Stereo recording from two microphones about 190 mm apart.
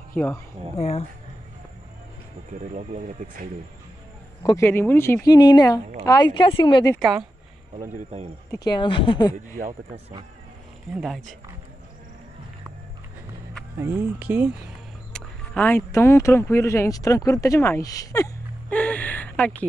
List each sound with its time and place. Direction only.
0.7 s speech: 30° left (ahead or behind)
2.5 s speech: 40° right (ahead or behind)
4.4 s speech: 15° left (ahead or behind)
7.9 s speech: 35° right (ahead or behind)
8.7 s speech: 25° left (ahead or behind)
9.3 s speech: 40° right (ahead or behind)
11.0 s speech: centre (ahead or behind)
13.7 s speech: 10° right (ahead or behind)
15.1 s speech: 5° left (ahead or behind)